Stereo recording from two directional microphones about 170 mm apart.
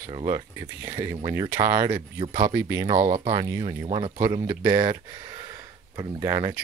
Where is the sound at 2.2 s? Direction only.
30° right (ahead or behind).